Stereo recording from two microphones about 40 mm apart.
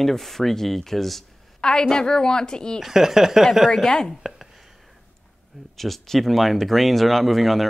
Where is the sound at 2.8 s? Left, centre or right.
Centre.